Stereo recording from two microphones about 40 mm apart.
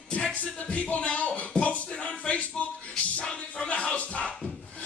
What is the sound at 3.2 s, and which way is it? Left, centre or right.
Music, left.